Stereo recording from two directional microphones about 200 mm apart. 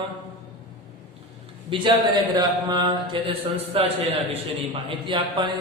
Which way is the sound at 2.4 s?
20° right (ahead or behind).